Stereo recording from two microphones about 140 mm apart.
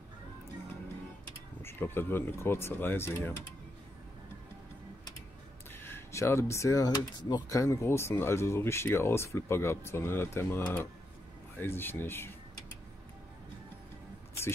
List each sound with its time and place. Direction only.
1.6 s speech: 15° left (ahead or behind)
5.8 s speech: 15° left (ahead or behind)